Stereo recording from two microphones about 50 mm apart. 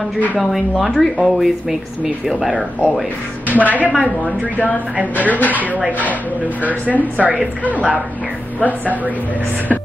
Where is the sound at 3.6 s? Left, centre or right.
Left.